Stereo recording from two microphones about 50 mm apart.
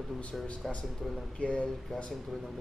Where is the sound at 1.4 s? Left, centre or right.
Left.